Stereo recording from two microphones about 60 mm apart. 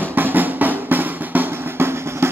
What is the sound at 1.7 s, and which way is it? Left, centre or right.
Drum, right.